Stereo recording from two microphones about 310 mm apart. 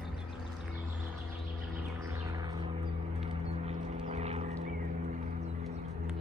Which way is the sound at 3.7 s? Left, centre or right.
Right.